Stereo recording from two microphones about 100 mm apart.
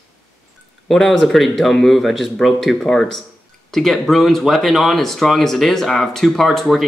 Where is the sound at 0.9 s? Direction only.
Centre (ahead or behind).